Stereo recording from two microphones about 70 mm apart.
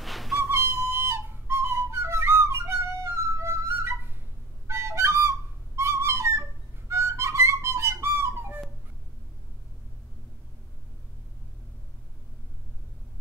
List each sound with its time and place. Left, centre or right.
0.0 s whistle: centre
0.5 s whistle: right
4.6 s flute: right
5.8 s whistle: right
6.9 s music: right